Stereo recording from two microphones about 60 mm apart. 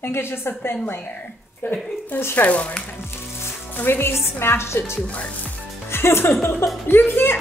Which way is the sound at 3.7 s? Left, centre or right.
Left.